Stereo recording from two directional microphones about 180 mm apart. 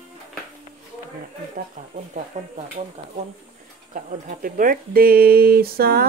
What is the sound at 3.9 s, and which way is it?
Speech, 50° right (ahead or behind).